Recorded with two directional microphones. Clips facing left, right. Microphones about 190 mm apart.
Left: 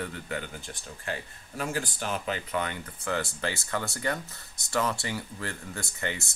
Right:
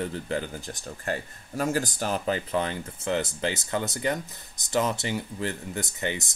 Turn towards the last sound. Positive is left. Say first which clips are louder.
# right 4 dB
turn(degrees=-20)  # may be behind; listen again after turning